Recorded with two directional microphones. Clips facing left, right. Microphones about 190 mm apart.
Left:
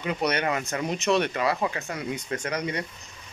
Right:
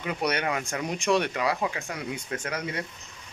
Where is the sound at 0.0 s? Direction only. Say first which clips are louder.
Left 2 dB; 10° right (ahead or behind).